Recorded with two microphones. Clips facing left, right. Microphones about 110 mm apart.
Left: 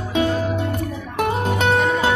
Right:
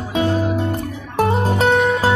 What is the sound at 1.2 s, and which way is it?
Music, 35° right (ahead or behind).